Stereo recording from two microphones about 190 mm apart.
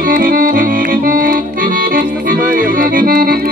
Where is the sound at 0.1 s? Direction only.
50° right (ahead or behind).